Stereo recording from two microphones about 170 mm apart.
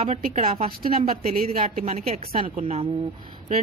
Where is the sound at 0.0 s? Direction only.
40° right (ahead or behind).